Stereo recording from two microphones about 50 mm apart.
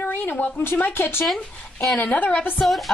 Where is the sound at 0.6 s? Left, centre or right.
Left.